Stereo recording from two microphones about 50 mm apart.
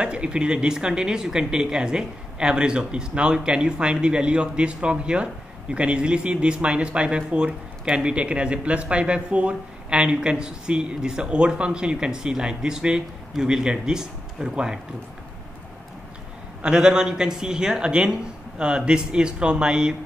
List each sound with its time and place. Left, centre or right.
0.0 s speech: right
16.6 s a man's voice: centre